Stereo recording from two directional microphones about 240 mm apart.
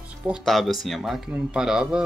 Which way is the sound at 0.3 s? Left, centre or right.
Centre.